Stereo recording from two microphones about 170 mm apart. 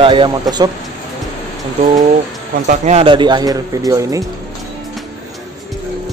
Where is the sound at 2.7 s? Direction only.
40° right (ahead or behind); by 4.2 s 20° right (ahead or behind).